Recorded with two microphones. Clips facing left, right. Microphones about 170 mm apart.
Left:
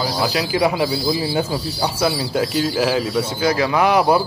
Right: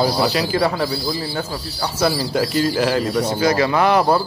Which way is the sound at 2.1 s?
Centre (ahead or behind).